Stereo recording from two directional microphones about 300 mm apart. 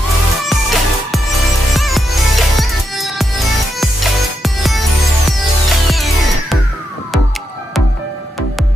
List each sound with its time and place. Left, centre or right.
0.5 s music: centre